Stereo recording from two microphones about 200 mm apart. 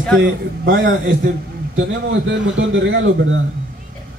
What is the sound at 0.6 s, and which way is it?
Speech, 65° right (ahead or behind).